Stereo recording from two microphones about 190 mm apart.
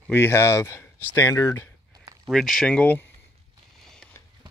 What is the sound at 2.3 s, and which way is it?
Speech, centre (ahead or behind).